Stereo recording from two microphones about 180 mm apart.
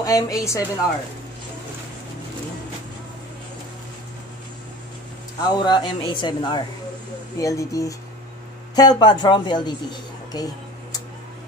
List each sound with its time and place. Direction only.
0.0 s speech: 20° left (ahead or behind)
5.4 s speech: 25° left (ahead or behind)